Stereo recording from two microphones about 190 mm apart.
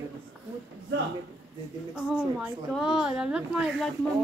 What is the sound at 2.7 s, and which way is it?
Speech, centre (ahead or behind).